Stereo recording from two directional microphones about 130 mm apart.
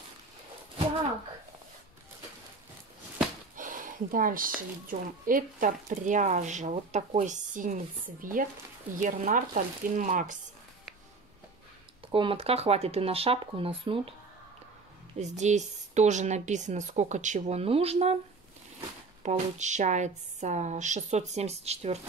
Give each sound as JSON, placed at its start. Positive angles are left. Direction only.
{"t": 3.5, "sound": "a sound", "side_deg": -90}
{"t": 4.6, "sound": "speech", "side_deg": -90}
{"t": 12.1, "sound": "speech", "side_deg": -45}
{"t": 15.1, "sound": "a woman's voice", "side_deg": -60}
{"t": 19.2, "sound": "a woman's voice", "side_deg": -65}